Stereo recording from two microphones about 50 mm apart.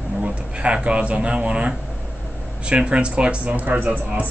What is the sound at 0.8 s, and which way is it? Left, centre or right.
Speech, right.